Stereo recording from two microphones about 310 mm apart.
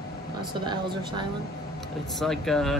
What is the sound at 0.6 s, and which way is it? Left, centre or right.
Speech, centre.